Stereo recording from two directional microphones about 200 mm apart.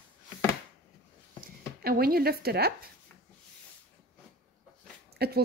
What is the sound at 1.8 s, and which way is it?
A woman's voice, 50° right (ahead or behind).